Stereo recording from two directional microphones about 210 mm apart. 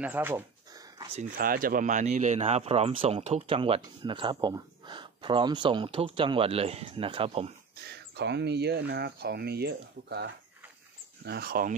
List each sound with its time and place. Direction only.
0.0 s speech: 10° right (ahead or behind)
0.9 s a sound: 25° right (ahead or behind)
1.3 s speech: 45° right (ahead or behind); by 7.5 s 25° right (ahead or behind)
8.2 s speech: 55° right (ahead or behind)